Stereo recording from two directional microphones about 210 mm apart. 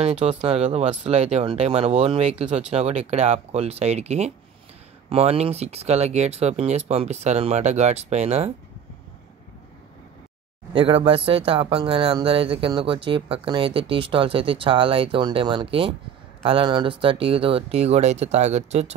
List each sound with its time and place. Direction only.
0.0 s speech: 30° right (ahead or behind)
10.7 s speech: 25° right (ahead or behind)